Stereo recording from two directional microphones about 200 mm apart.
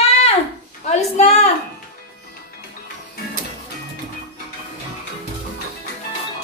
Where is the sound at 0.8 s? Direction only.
35° left (ahead or behind).